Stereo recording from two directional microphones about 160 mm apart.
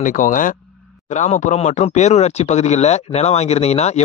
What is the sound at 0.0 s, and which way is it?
Speech, 55° left (ahead or behind).